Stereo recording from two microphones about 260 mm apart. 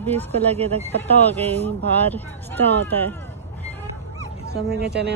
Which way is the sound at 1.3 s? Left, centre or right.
Centre.